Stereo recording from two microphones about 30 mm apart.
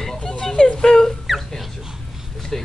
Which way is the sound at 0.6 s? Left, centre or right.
Left.